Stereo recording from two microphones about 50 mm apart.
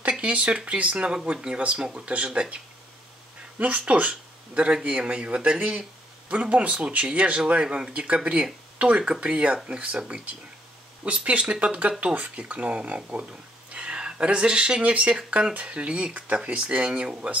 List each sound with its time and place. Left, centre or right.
0.2 s speech: right
3.5 s speech: right
4.1 s speech: centre